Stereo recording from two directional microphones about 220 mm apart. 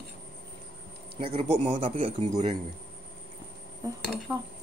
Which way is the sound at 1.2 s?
25° right (ahead or behind).